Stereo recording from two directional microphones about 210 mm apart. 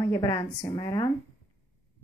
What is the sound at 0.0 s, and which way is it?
A woman's voice, 15° left (ahead or behind).